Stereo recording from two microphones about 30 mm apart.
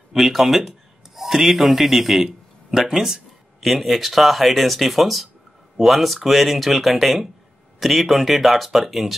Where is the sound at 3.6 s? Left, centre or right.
Centre.